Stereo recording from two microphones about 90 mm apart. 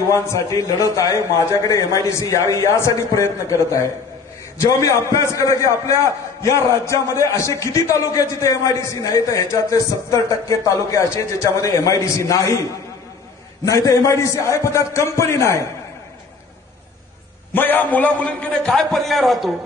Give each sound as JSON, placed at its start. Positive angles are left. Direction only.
{"t": 0.1, "sound": "a man's voice", "side_deg": 35}
{"t": 13.7, "sound": "a man's voice", "side_deg": 35}
{"t": 17.6, "sound": "a man's voice", "side_deg": 20}